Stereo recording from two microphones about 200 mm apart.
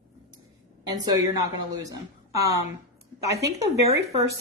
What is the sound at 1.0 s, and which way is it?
Speech, 20° right (ahead or behind).